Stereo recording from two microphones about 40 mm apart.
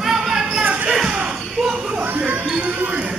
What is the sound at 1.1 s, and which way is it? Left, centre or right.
Basketball bounce, right.